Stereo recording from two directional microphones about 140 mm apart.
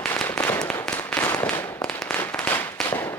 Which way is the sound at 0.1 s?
15° left (ahead or behind).